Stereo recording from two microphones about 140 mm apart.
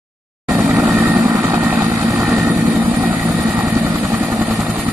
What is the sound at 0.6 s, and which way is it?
Vehicle, 10° right (ahead or behind).